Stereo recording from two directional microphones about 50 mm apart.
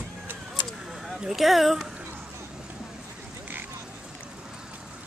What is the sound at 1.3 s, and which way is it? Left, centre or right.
Speech, centre.